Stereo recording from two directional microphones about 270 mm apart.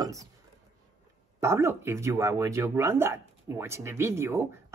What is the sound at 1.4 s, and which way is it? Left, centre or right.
Speech, centre.